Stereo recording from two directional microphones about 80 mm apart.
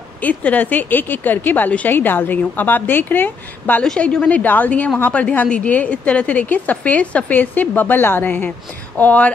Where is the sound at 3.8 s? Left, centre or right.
Centre.